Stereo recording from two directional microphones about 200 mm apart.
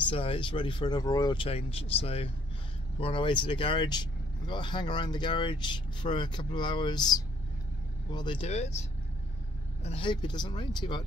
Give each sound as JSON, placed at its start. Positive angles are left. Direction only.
{"t": 0.1, "sound": "speech", "side_deg": 25}
{"t": 9.8, "sound": "speech", "side_deg": 25}